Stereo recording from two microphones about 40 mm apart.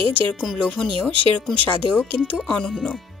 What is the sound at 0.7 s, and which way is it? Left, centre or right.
Speech, centre.